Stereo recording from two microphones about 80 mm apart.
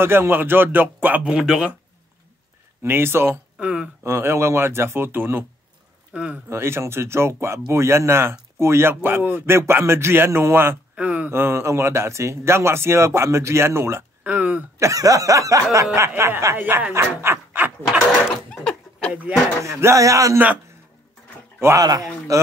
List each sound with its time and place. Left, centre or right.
0.0 s speech: right
1.2 s speech: centre
2.8 s speech: right
3.5 s speech: centre
4.0 s speech: right
6.1 s speech: centre
6.5 s speech: right
14.8 s snicker: right
16.2 s speech: right
16.5 s speech: right
18.5 s a sound: centre
19.6 s speech: right
21.7 s snicker: right